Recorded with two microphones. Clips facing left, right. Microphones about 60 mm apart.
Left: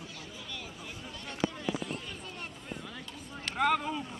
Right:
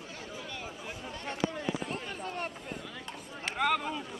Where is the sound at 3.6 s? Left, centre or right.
Centre.